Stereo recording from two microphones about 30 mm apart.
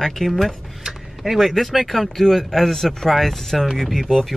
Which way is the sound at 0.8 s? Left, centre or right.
Centre.